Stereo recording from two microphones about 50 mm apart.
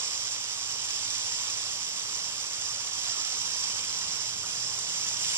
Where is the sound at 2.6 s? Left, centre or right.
Right.